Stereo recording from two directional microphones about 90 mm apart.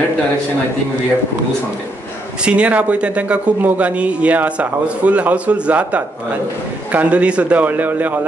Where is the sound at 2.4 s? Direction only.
15° right (ahead or behind).